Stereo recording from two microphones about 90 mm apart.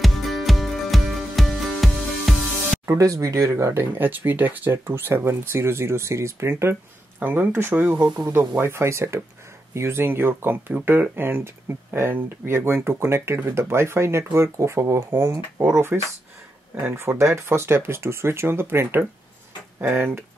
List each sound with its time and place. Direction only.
0.0 s music: centre (ahead or behind)
2.9 s speech: 40° right (ahead or behind)